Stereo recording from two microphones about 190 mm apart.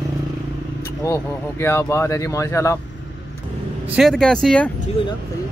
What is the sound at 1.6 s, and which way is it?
Speech, 15° left (ahead or behind).